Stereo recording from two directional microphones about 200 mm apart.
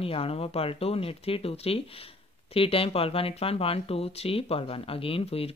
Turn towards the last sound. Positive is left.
turn(degrees=30)  # may be behind; listen again after turning